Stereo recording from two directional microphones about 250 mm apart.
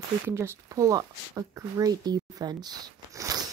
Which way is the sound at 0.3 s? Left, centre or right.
Centre.